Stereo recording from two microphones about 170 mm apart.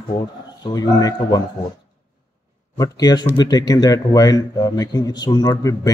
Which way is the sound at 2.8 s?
20° left (ahead or behind).